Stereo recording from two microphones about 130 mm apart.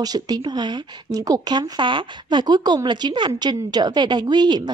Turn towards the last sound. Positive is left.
turn(degrees=-35)  # may be behind; listen again after turning